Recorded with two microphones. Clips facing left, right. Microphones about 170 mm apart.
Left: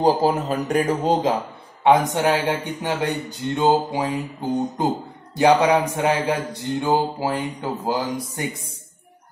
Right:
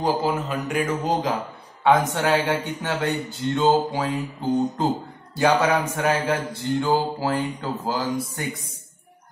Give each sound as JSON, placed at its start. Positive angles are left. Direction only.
{"t": 0.0, "sound": "speech", "side_deg": 35}
{"t": 1.9, "sound": "speech", "side_deg": 15}